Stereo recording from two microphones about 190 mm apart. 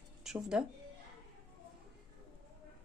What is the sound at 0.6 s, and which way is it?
Speech, 5° right (ahead or behind).